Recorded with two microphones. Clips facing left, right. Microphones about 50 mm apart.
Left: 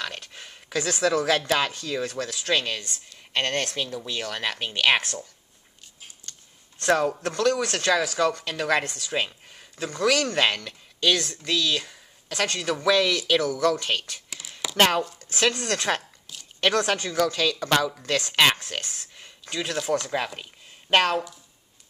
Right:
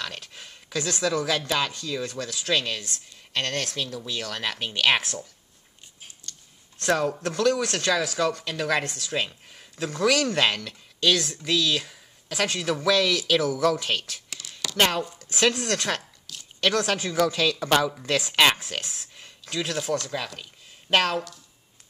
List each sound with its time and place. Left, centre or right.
0.0 s a sound: centre
0.7 s speech: centre
6.8 s speech: centre
14.5 s chopping: centre
15.1 s speech: centre
20.1 s speech: left
20.9 s speech: centre